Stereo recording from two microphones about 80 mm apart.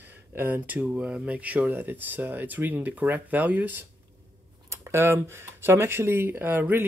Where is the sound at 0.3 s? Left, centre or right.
Right.